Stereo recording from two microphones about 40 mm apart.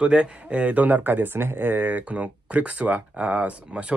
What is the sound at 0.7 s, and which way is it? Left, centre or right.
Speech, right.